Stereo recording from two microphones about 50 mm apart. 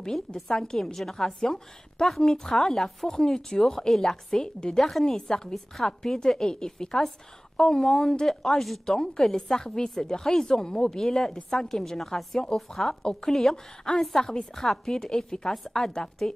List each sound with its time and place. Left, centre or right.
0.0 s a woman's voice: centre